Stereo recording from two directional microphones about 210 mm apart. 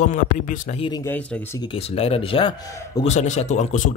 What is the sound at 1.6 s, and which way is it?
A man's voice, 25° left (ahead or behind).